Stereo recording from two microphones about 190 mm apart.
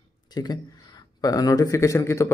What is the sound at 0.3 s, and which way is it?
A man's voice, 20° left (ahead or behind).